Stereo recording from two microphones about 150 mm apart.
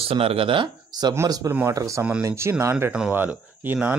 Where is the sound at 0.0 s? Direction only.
40° right (ahead or behind).